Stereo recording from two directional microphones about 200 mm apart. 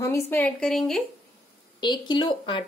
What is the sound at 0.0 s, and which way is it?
A woman's voice, 15° left (ahead or behind).